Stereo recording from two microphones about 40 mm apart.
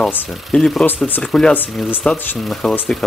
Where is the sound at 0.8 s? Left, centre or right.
Left.